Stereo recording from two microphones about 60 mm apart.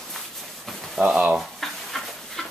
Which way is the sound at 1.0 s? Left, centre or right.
Centre.